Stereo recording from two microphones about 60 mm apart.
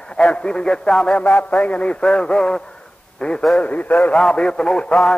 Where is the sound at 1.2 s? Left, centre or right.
Left.